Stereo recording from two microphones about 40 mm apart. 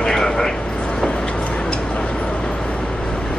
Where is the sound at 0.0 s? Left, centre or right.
Centre.